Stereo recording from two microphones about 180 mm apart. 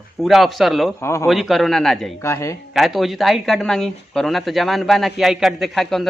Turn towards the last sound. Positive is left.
turn(degrees=0)  # may be behind; listen again after turning